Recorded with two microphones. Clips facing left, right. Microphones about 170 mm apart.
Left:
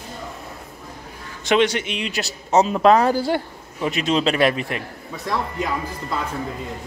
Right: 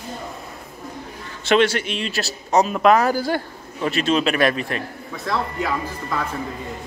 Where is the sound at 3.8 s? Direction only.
15° left (ahead or behind).